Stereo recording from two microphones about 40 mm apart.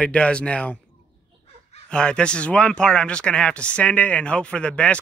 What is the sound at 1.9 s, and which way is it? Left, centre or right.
Speech, left.